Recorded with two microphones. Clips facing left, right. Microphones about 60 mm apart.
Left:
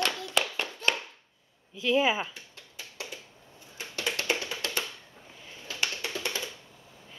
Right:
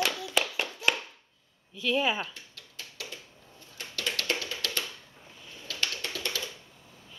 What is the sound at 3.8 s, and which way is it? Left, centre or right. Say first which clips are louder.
Music: left 1 dB; left.